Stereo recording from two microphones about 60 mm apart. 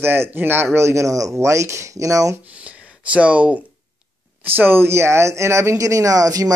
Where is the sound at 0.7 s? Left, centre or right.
Right.